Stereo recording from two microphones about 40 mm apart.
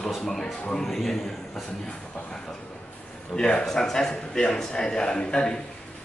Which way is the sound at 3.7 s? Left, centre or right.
Centre.